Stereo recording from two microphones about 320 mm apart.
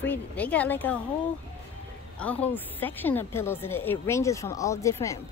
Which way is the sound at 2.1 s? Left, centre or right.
Centre.